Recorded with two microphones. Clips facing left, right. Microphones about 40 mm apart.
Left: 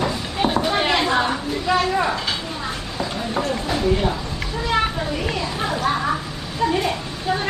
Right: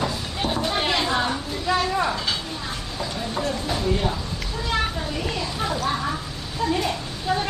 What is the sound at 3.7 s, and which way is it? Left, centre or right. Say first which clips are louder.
Music: left 5 dB; left.